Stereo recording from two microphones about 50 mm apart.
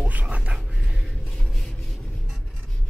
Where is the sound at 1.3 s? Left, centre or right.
Centre.